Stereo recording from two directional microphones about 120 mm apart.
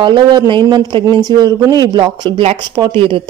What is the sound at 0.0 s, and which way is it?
A woman's voice, 40° right (ahead or behind).